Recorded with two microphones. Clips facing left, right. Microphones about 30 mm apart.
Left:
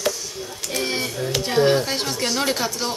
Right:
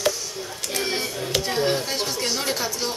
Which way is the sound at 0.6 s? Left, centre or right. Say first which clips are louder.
Left 2 dB; centre.